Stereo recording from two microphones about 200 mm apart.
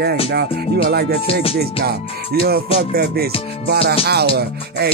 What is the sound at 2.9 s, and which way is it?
Music, 50° right (ahead or behind).